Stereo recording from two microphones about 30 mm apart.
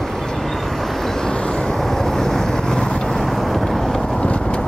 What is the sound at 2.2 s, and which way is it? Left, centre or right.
Vehicle, centre.